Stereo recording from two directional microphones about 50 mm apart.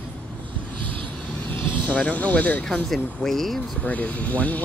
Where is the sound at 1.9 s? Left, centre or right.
Left.